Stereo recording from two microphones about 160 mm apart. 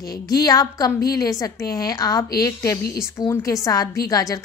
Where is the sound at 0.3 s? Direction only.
20° left (ahead or behind).